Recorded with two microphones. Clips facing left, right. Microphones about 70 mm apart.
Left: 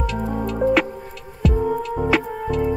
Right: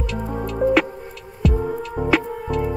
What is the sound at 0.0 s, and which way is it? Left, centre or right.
Music, centre.